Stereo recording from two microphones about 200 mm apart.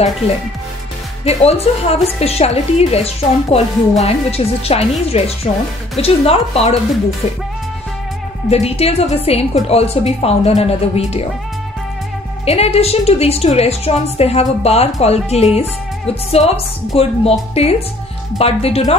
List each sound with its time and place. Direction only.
1.2 s a woman's voice: 30° left (ahead or behind)
8.5 s a woman's voice: 30° left (ahead or behind)
12.4 s a woman's voice: 30° left (ahead or behind)